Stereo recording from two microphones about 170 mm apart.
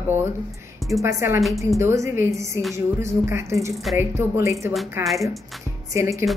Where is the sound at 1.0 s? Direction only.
15° right (ahead or behind).